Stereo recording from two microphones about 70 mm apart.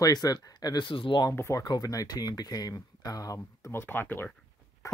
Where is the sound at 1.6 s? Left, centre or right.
Left.